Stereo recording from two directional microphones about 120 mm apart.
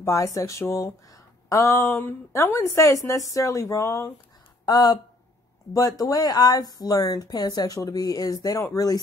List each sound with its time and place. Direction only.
0.0 s a woman's voice: 25° left (ahead or behind)
4.6 s speech: 35° left (ahead or behind)